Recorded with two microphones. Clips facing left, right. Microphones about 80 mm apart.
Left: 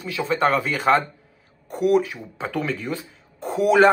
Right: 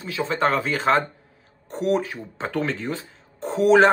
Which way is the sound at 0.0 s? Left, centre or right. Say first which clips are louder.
Even; right.